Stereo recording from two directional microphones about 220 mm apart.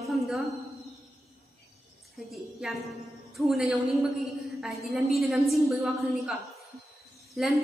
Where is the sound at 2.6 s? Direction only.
5° right (ahead or behind).